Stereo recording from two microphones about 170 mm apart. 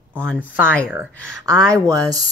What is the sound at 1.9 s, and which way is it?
Speech, 20° right (ahead or behind).